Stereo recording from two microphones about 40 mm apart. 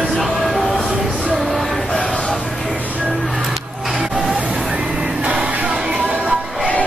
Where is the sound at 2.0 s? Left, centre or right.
Left.